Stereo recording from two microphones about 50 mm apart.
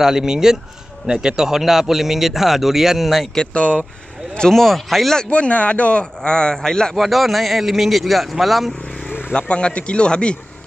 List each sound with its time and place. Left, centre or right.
0.0 s speech: centre
3.3 s a man's voice: left
4.5 s a man's voice: centre
5.3 s a man's voice: left
7.0 s a man's voice: centre
9.3 s a man's voice: left